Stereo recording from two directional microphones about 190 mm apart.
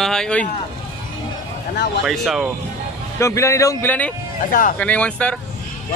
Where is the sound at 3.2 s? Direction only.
15° left (ahead or behind).